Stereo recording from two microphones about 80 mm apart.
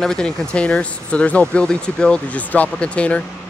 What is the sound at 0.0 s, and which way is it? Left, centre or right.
Speech, centre.